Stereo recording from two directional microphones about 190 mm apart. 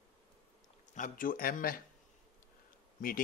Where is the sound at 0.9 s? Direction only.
45° left (ahead or behind).